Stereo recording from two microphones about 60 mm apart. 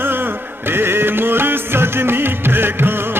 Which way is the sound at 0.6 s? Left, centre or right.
Right.